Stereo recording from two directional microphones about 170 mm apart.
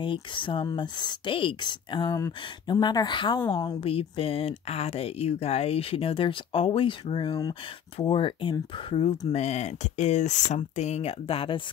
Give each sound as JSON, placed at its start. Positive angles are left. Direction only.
{"t": 0.0, "sound": "speech", "side_deg": 30}